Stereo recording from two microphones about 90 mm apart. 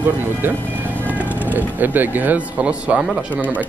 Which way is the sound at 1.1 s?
20° right (ahead or behind).